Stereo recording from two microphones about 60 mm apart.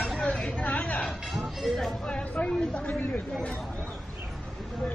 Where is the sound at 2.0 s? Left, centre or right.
Centre.